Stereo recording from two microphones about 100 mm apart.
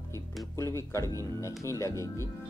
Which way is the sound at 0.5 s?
30° left (ahead or behind).